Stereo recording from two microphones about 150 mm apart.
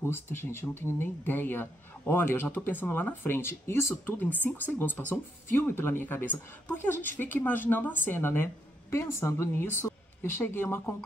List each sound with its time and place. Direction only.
0.0 s a woman's voice: 15° left (ahead or behind)